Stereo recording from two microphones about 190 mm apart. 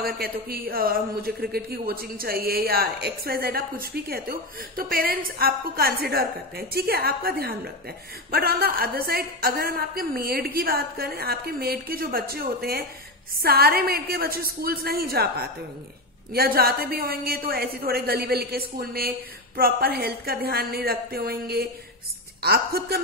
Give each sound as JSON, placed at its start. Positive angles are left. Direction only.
{"t": 0.0, "sound": "a woman's voice", "side_deg": -50}